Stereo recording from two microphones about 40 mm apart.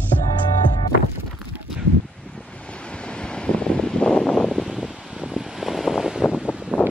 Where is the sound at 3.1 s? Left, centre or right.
Left.